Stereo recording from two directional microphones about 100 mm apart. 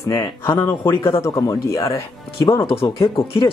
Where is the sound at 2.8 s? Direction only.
60° left (ahead or behind).